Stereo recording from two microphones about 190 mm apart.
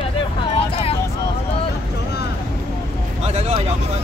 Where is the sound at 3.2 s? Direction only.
30° right (ahead or behind).